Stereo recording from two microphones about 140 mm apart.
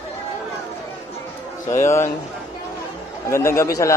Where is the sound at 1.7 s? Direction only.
20° left (ahead or behind).